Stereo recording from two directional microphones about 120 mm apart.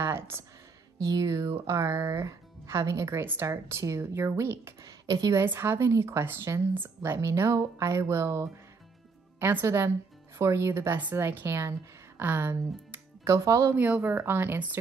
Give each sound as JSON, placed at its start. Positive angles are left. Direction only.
{"t": 0.0, "sound": "a sound", "side_deg": -20}
{"t": 1.0, "sound": "speech", "side_deg": -30}
{"t": 13.7, "sound": "speech", "side_deg": -15}